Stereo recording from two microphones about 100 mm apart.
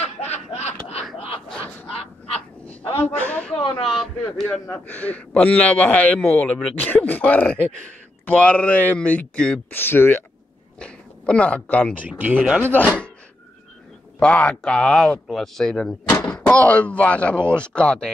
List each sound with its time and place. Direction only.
0.0 s snicker: 90° left
2.6 s a sound: 15° left (ahead or behind)
3.5 s a sound: 65° left (ahead or behind)
4.7 s speech: 15° left (ahead or behind)
9.8 s speech: 20° left (ahead or behind)
10.8 s speech: 10° left (ahead or behind)
11.9 s speech: 15° right (ahead or behind)
12.6 s speech: 15° left (ahead or behind)
14.2 s speech: 10° left (ahead or behind)